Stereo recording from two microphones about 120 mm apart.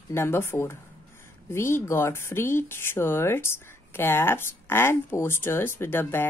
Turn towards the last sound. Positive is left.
turn(degrees=20)  # may be behind; listen again after turning